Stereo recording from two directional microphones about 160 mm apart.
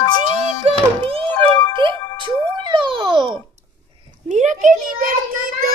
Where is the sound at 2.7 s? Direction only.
30° right (ahead or behind).